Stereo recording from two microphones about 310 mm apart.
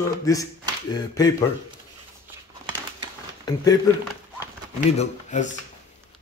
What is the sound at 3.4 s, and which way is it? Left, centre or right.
Speech, centre.